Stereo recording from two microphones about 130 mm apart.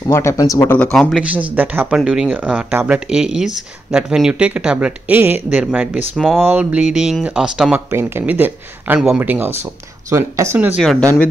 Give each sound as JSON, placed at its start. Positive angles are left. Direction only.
{"t": 0.1, "sound": "speech", "side_deg": 20}
{"t": 0.9, "sound": "speech", "side_deg": -5}
{"t": 7.9, "sound": "speech", "side_deg": -20}
{"t": 10.8, "sound": "speech", "side_deg": 0}